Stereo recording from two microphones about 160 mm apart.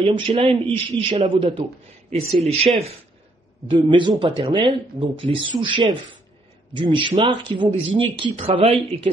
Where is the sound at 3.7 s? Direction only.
30° right (ahead or behind).